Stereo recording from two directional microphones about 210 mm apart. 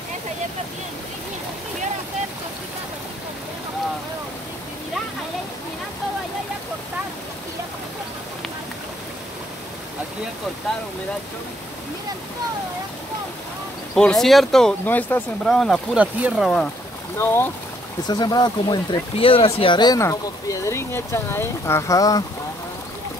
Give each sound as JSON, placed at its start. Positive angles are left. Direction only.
{"t": 13.9, "sound": "speech", "side_deg": 0}
{"t": 17.2, "sound": "speech", "side_deg": 10}